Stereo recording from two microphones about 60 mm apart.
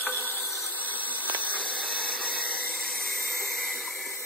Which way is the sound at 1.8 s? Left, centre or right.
Centre.